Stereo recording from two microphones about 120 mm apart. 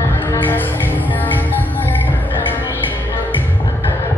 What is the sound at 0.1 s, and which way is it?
Music, 15° left (ahead or behind).